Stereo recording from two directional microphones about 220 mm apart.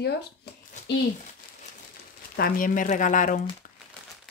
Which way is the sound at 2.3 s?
40° left (ahead or behind).